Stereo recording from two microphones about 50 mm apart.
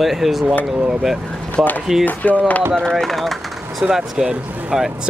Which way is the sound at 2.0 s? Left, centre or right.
Left.